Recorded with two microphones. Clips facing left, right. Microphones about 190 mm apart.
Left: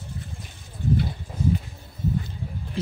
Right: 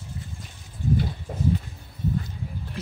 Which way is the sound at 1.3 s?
50° right (ahead or behind).